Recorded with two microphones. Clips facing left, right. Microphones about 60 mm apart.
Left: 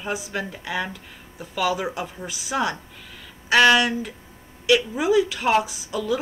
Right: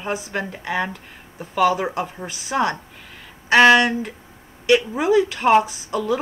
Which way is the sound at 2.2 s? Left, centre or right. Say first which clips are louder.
Right 3 dB; right.